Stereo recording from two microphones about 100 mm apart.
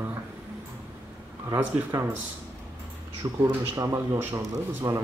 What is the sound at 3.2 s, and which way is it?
Speech, 40° right (ahead or behind).